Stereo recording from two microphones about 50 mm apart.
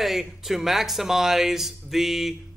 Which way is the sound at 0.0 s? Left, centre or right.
Centre.